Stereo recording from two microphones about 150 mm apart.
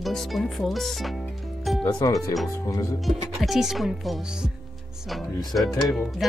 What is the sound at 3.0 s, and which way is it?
Speech, centre (ahead or behind).